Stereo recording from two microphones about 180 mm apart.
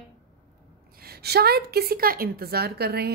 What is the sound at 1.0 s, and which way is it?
A woman's voice, 60° right (ahead or behind).